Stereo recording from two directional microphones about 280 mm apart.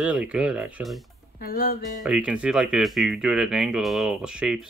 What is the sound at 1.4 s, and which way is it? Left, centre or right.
Music, left.